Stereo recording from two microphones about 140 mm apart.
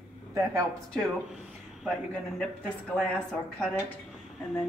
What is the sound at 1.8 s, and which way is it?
Speech, 5° left (ahead or behind).